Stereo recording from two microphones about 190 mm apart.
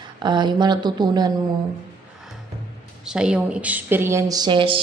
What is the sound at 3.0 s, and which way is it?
A woman's voice, 5° right (ahead or behind).